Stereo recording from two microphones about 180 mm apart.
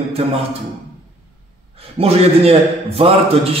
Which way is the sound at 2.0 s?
30° right (ahead or behind).